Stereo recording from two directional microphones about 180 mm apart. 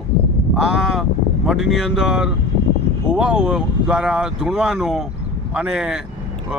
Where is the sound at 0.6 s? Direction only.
5° right (ahead or behind).